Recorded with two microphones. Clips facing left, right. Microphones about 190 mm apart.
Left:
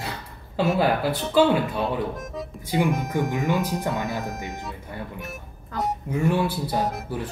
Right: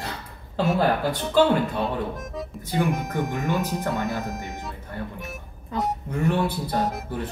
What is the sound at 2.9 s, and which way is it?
Speech, centre (ahead or behind).